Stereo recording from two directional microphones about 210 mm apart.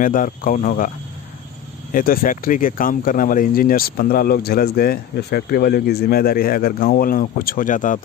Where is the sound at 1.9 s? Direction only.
40° left (ahead or behind).